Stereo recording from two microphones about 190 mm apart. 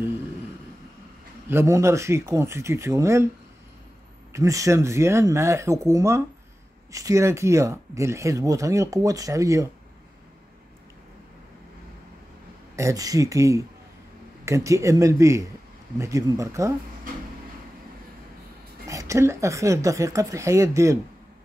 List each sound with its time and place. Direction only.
1.5 s speech: 15° right (ahead or behind)
4.3 s speech: 15° right (ahead or behind)
12.7 s speech: 15° right (ahead or behind)
18.9 s speech: 15° right (ahead or behind)